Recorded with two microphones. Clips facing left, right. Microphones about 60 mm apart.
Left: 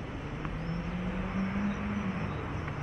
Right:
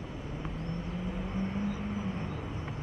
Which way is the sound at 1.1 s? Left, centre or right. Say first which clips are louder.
Left 1 dB; left.